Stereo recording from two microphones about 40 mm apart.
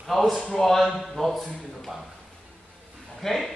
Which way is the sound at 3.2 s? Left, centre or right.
Centre.